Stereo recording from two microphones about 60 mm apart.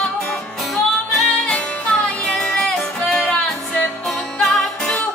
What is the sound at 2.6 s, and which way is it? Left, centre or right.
Music, centre.